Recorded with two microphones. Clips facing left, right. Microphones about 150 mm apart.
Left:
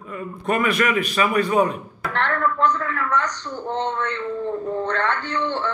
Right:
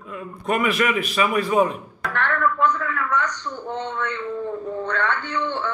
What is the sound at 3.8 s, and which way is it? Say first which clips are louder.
Speech: left 4 dB; 60° left (ahead or behind).